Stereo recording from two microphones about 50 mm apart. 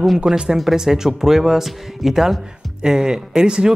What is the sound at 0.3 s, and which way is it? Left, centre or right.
Speech, centre.